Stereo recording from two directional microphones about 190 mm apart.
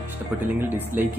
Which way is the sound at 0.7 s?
10° right (ahead or behind).